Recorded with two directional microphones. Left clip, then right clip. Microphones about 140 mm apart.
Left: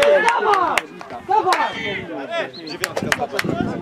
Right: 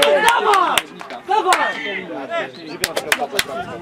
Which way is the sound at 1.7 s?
25° left (ahead or behind).